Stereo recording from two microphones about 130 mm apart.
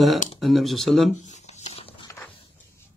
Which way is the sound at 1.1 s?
60° left (ahead or behind).